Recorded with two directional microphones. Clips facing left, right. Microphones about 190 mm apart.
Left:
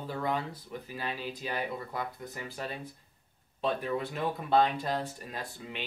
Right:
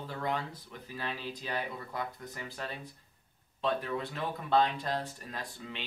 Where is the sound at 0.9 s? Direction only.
10° left (ahead or behind).